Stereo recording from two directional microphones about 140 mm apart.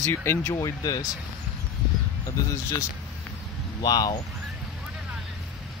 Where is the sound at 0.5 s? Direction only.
25° left (ahead or behind).